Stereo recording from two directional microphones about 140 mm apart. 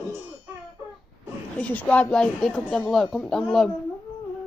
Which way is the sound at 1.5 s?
10° left (ahead or behind).